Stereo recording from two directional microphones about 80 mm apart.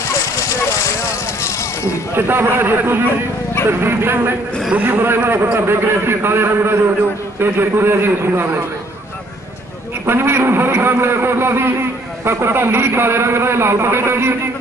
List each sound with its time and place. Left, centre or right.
2.1 s a man's voice: right
10.0 s a man's voice: right